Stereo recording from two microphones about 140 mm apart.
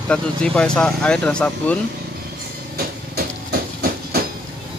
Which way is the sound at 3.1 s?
90° right.